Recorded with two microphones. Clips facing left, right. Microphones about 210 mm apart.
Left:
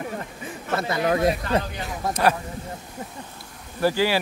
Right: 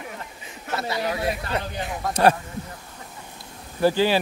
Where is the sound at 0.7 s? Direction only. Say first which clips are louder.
Left 4 dB; 50° left (ahead or behind).